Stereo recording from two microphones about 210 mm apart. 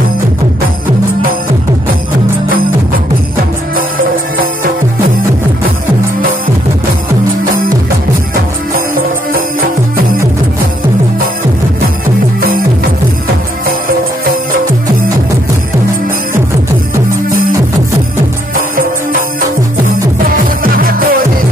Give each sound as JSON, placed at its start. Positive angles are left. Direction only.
{"t": 9.3, "sound": "music", "side_deg": -45}
{"t": 20.6, "sound": "music", "side_deg": -45}